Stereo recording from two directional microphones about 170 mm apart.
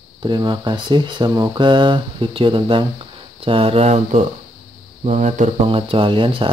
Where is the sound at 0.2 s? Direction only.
25° right (ahead or behind); by 5.5 s 40° right (ahead or behind).